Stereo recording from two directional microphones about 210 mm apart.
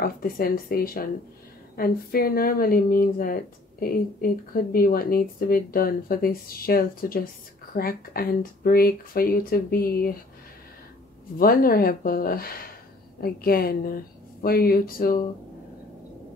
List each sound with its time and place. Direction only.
0.0 s a woman's voice: 45° left (ahead or behind)
11.3 s a woman's voice: 45° left (ahead or behind)